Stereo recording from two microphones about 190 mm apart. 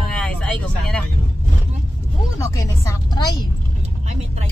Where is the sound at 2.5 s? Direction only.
15° left (ahead or behind).